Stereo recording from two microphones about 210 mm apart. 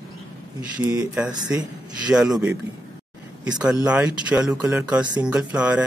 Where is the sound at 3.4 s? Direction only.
5° right (ahead or behind).